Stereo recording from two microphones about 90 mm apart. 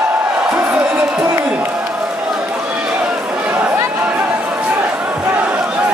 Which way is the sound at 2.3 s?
10° right (ahead or behind).